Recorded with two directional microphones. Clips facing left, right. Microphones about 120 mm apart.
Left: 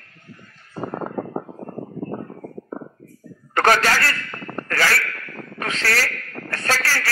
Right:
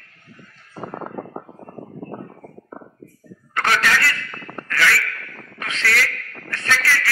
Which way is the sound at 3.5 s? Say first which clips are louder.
Left 3 dB; 40° left (ahead or behind).